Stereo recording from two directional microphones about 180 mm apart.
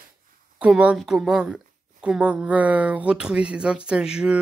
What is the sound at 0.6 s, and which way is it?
Speech, 5° right (ahead or behind).